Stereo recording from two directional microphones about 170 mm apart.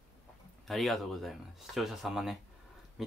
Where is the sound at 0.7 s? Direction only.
Centre (ahead or behind).